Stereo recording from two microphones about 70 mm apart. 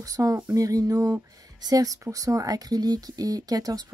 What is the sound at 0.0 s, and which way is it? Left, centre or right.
Speech, right.